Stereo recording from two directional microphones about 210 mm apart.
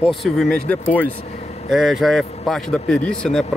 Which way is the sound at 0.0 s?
Centre (ahead or behind).